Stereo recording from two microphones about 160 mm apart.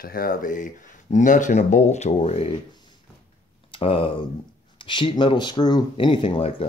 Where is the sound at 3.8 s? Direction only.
35° left (ahead or behind).